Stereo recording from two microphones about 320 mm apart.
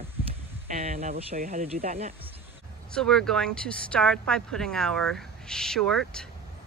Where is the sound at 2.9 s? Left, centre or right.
Centre.